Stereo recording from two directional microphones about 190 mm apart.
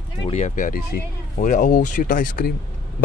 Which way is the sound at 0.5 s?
45° left (ahead or behind).